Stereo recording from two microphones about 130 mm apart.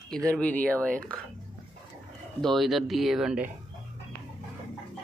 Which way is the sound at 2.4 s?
Centre (ahead or behind).